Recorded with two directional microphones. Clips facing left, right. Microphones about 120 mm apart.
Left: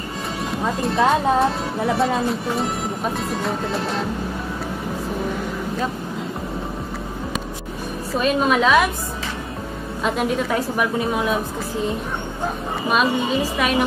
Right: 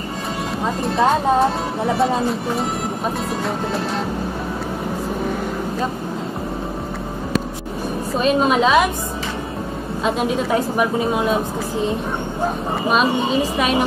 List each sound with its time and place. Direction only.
0.7 s speech: centre (ahead or behind)
8.2 s a woman's voice: 25° right (ahead or behind)
10.0 s a woman's voice: 25° right (ahead or behind)
13.6 s a woman's voice: 25° right (ahead or behind)